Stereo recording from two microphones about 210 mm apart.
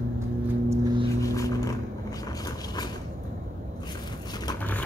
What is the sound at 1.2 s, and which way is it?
Vehicle, 15° left (ahead or behind).